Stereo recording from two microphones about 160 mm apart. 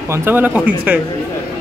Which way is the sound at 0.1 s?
15° right (ahead or behind).